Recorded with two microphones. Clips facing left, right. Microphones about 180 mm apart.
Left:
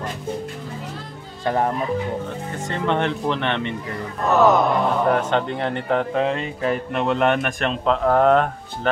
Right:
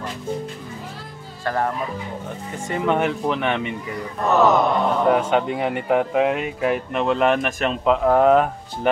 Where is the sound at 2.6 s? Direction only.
10° right (ahead or behind).